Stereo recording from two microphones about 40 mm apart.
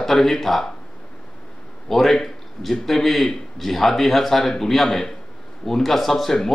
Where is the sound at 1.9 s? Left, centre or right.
Centre.